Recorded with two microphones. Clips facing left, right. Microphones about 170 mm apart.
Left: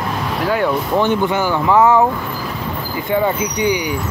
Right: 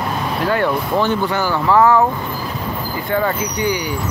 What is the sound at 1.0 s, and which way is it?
Speech, 20° left (ahead or behind).